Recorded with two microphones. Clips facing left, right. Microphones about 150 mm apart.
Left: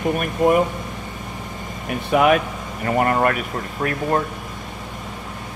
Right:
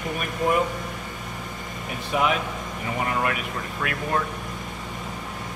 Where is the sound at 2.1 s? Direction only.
60° left (ahead or behind).